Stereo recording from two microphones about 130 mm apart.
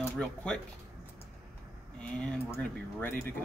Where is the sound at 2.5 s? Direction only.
15° left (ahead or behind).